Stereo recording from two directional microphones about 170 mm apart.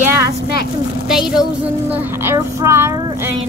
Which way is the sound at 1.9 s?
10° right (ahead or behind).